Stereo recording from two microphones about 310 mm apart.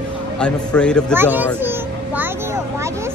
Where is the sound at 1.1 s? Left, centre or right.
Centre.